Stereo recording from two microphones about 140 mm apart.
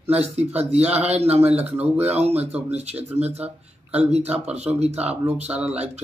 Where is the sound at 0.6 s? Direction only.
50° right (ahead or behind).